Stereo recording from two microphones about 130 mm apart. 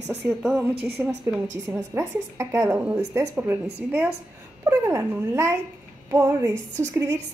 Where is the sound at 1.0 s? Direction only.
15° right (ahead or behind).